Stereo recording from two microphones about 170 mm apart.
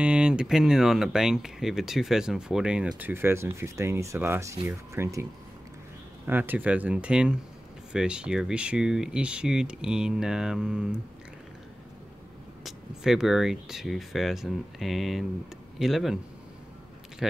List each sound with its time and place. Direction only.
0.0 s speech: 5° right (ahead or behind)
6.2 s speech: 10° right (ahead or behind)
12.6 s speech: 5° right (ahead or behind)
17.2 s speech: centre (ahead or behind)